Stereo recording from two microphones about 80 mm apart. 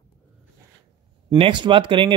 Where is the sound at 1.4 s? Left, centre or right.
Right.